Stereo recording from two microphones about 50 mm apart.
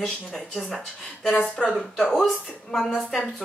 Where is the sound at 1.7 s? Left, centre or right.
Centre.